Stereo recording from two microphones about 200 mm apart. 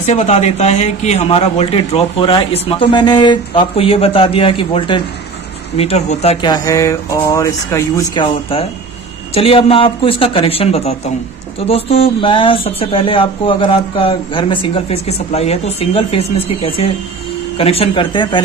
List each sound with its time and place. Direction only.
0.0 s speech: 35° left (ahead or behind)
6.4 s speech: 20° left (ahead or behind)